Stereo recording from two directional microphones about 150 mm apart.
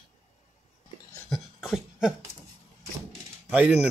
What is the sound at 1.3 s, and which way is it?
Cough, centre (ahead or behind).